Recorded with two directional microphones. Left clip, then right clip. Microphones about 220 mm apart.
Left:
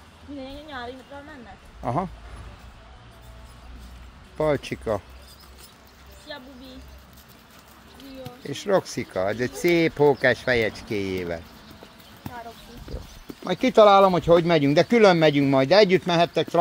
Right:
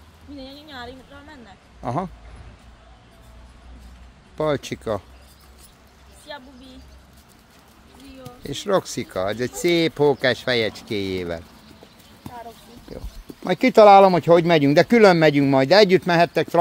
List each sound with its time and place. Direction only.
0.4 s speech: 25° right (ahead or behind)
4.4 s speech: 15° right (ahead or behind)
6.3 s a sound: 25° right (ahead or behind)
8.5 s speech: 15° right (ahead or behind)
13.4 s speech: 30° right (ahead or behind)